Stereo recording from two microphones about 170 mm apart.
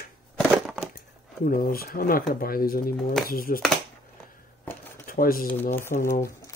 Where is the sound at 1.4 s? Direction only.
60° left (ahead or behind).